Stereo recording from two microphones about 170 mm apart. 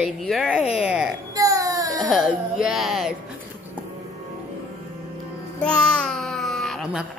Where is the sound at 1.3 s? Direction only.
20° right (ahead or behind).